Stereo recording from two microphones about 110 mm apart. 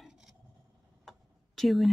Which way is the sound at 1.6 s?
Centre (ahead or behind).